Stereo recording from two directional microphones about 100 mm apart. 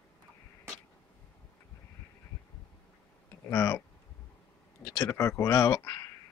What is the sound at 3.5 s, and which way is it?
Speech, 25° left (ahead or behind).